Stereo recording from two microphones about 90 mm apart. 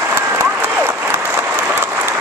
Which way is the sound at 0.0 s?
25° right (ahead or behind).